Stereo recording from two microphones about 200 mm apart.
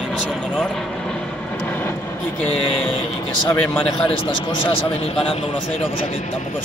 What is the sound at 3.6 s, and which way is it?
Speech, 5° left (ahead or behind).